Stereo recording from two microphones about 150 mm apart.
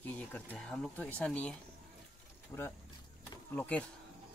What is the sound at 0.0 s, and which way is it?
Speech, 10° left (ahead or behind).